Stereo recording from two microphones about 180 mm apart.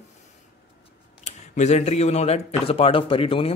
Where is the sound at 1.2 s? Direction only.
40° left (ahead or behind).